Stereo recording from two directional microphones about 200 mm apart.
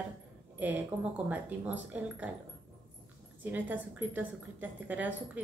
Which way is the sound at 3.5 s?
10° right (ahead or behind).